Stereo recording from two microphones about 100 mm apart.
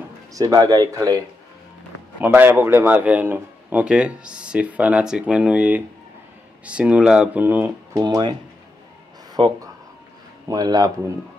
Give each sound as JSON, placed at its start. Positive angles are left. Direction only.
{"t": 0.3, "sound": "speech", "side_deg": -35}
{"t": 2.2, "sound": "a man's voice", "side_deg": -20}
{"t": 7.4, "sound": "speech", "side_deg": -20}
{"t": 7.9, "sound": "speech", "side_deg": -40}
{"t": 9.4, "sound": "speech", "side_deg": -55}
{"t": 10.5, "sound": "speech", "side_deg": -40}